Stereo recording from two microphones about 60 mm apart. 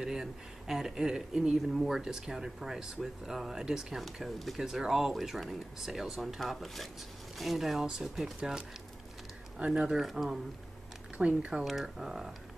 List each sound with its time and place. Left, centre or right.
0.0 s speech: centre
9.7 s speech: centre
11.1 s speech: centre
11.6 s speech: centre